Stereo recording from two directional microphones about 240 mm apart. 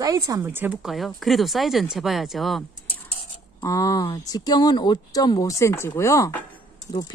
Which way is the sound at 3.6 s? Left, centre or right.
Centre.